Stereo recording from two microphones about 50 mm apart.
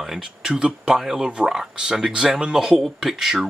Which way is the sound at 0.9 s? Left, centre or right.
Centre.